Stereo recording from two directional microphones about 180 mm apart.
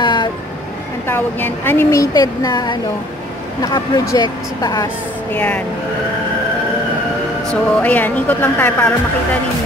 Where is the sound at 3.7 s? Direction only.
20° left (ahead or behind).